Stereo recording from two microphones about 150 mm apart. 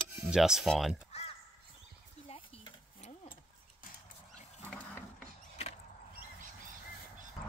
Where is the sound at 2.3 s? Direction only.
40° left (ahead or behind).